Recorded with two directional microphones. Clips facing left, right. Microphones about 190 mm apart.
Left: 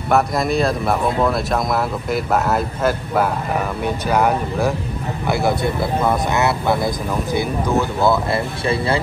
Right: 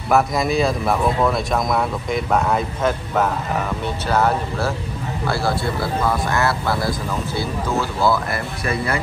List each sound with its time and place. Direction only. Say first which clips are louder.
0.1 s speech: even; centre (ahead or behind); by 9.0 s 30° left (ahead or behind)